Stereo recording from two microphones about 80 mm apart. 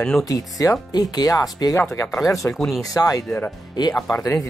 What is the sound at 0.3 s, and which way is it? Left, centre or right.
Speech, left.